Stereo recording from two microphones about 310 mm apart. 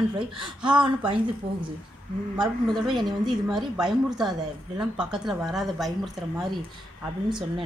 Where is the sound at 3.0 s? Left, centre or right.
Centre.